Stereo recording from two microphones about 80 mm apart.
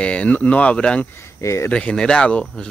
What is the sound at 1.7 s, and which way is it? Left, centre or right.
Speech, centre.